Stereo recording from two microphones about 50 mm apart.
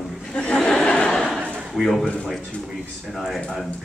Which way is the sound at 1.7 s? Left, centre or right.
Centre.